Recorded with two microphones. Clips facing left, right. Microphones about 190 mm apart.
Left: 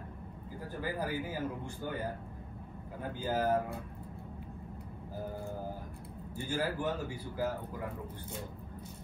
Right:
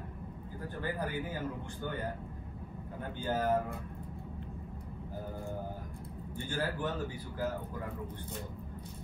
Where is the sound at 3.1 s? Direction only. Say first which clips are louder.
Even; 10° left (ahead or behind).